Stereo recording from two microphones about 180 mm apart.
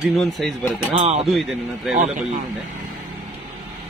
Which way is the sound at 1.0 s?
35° right (ahead or behind).